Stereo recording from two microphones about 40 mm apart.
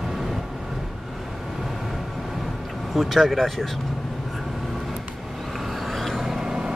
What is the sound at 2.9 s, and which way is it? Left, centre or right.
Speech, centre.